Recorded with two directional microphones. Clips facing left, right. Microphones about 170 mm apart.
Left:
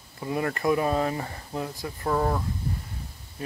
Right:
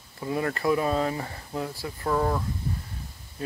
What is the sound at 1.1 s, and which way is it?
Speech, 30° left (ahead or behind).